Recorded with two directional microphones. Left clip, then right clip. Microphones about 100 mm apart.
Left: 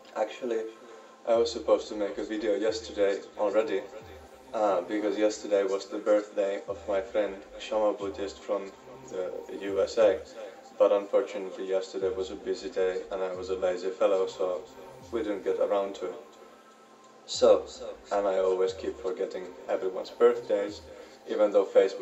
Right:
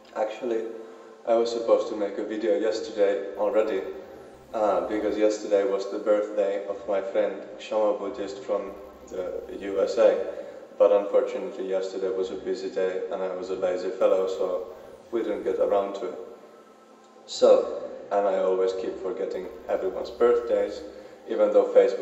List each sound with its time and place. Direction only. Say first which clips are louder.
0.1 s a man's voice: right 3 dB; 10° right (ahead or behind)
18.1 s a man's voice: right 3 dB; 15° right (ahead or behind)